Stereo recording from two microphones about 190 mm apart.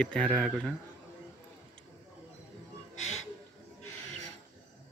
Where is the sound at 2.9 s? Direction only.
35° left (ahead or behind).